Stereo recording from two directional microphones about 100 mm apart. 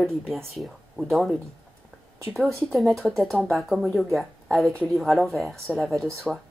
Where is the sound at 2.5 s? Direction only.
Centre (ahead or behind).